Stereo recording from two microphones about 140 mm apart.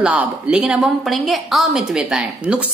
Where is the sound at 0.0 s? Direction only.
5° right (ahead or behind).